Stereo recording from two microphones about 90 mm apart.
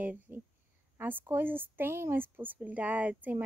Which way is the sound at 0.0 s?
20° right (ahead or behind).